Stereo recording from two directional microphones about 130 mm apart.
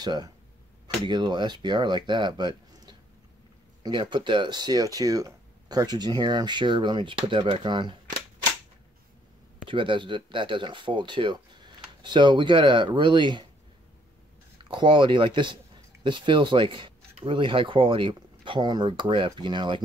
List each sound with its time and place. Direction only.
0.0 s speech: 30° right (ahead or behind)
9.7 s speech: 40° right (ahead or behind)
14.7 s speech: 40° right (ahead or behind)